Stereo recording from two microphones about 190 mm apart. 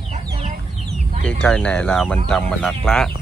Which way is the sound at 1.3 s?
5° left (ahead or behind).